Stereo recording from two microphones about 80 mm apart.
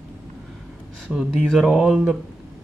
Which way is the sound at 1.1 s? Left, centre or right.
Centre.